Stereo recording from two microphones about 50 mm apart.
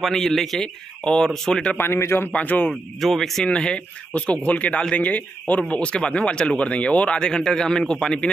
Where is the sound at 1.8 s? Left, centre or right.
Left.